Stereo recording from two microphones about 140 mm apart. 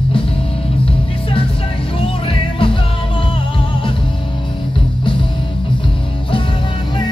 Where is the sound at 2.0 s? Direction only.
40° left (ahead or behind).